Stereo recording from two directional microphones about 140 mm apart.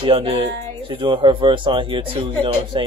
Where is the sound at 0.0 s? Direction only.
40° right (ahead or behind).